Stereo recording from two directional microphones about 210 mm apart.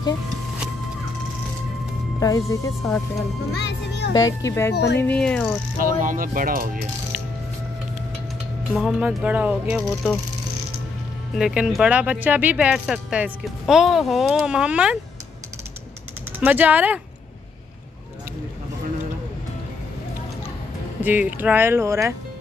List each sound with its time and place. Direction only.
2.1 s speech: 15° left (ahead or behind)
3.5 s music: 55° left (ahead or behind)
4.4 s speech: 15° left (ahead or behind)
4.7 s speech: 55° left (ahead or behind)
5.0 s speech: 5° left (ahead or behind)
5.8 s speech: 40° right (ahead or behind)
8.7 s speech: 5° right (ahead or behind)
11.3 s speech: 5° right (ahead or behind)
16.3 s speech: 10° right (ahead or behind)
21.0 s speech: 10° right (ahead or behind)